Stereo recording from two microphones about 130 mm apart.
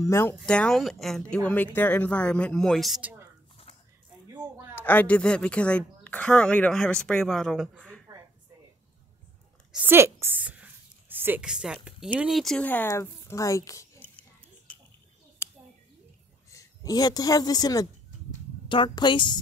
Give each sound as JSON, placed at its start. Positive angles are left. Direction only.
{"t": 0.0, "sound": "a woman's voice", "side_deg": 20}
{"t": 0.5, "sound": "speech", "side_deg": 5}
{"t": 1.3, "sound": "speech", "side_deg": 10}
{"t": 3.0, "sound": "a sound", "side_deg": -15}
{"t": 4.7, "sound": "speech", "side_deg": 15}
{"t": 9.8, "sound": "a sound", "side_deg": -20}
{"t": 12.2, "sound": "speech", "side_deg": 0}
{"t": 12.6, "sound": "a woman's voice", "side_deg": 15}
{"t": 13.9, "sound": "biting", "side_deg": 10}
{"t": 14.7, "sound": "a sound", "side_deg": 10}
{"t": 16.5, "sound": "a woman's voice", "side_deg": 30}